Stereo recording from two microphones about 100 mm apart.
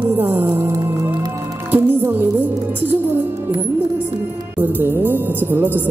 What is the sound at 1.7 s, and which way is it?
Music, 20° right (ahead or behind).